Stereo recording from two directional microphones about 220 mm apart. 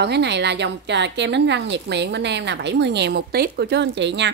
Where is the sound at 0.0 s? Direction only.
50° right (ahead or behind).